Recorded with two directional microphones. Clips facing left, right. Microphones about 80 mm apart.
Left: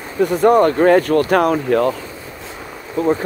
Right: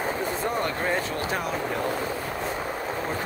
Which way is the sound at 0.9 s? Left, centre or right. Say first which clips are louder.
Left 14 dB; left.